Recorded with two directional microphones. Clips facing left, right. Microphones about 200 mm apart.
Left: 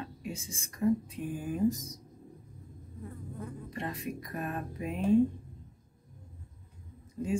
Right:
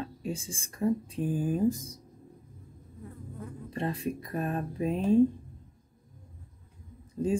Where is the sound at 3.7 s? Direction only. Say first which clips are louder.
Right 7 dB; 30° right (ahead or behind).